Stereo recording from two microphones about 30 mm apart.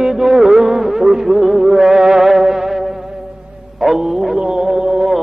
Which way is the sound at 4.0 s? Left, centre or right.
Centre.